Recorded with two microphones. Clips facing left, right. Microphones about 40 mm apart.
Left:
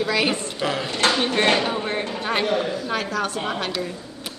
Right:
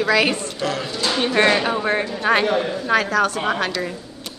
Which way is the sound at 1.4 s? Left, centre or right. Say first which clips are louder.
Right 4 dB; right.